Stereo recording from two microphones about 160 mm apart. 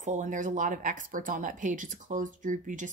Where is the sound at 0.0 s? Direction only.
50° right (ahead or behind).